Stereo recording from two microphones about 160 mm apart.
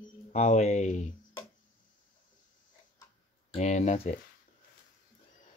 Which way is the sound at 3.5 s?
45° left (ahead or behind).